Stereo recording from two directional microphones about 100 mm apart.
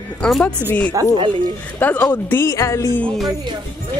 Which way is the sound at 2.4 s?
30° left (ahead or behind).